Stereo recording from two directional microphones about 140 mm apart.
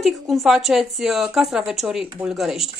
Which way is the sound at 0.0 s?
Centre (ahead or behind).